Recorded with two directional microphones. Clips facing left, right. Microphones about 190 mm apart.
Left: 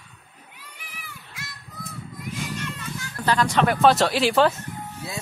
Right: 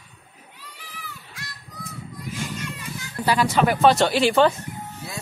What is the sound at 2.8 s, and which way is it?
Speech, 10° right (ahead or behind).